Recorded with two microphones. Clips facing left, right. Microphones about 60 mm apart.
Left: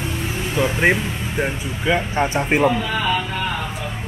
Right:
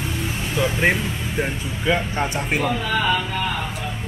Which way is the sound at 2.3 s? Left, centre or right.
Left.